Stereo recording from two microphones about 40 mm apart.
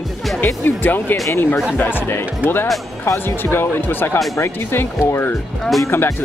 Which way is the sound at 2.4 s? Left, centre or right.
Left.